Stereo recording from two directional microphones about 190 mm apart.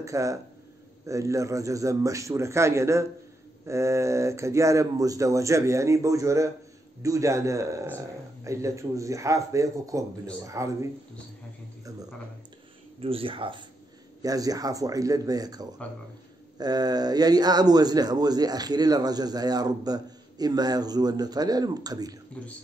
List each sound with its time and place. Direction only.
0.0 s speech: 15° right (ahead or behind)
13.0 s a man's voice: 30° right (ahead or behind)